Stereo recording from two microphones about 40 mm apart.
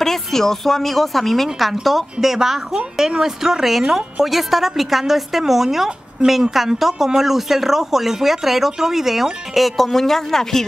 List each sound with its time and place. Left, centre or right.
0.0 s a woman's voice: centre